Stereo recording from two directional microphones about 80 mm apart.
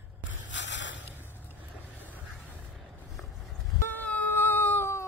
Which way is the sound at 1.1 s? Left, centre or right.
Left.